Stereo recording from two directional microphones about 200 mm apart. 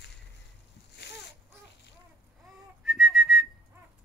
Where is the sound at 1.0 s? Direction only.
55° left (ahead or behind).